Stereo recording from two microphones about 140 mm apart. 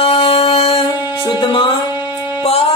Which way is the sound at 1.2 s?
35° left (ahead or behind).